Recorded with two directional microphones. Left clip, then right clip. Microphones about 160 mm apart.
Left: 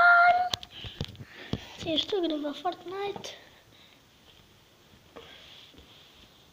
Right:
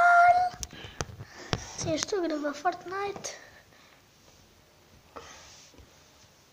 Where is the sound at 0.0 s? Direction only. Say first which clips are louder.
Even; centre (ahead or behind).